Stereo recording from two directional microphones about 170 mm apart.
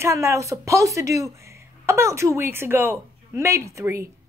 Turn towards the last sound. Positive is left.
turn(degrees=-15)  # may be behind; listen again after turning